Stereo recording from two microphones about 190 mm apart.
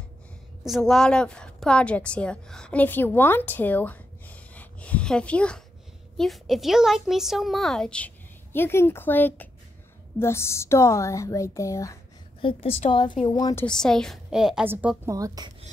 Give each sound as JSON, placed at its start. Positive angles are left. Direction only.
{"t": 0.7, "sound": "a woman's voice", "side_deg": 0}
{"t": 12.4, "sound": "a woman's voice", "side_deg": 25}
{"t": 13.7, "sound": "a woman's voice", "side_deg": 5}